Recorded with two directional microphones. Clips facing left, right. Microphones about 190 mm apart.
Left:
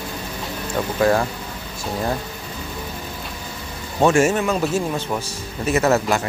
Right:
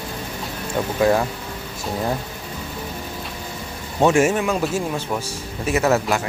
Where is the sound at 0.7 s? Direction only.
10° right (ahead or behind).